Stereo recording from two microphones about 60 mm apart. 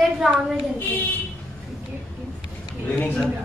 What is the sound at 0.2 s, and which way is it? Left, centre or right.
Speech, centre.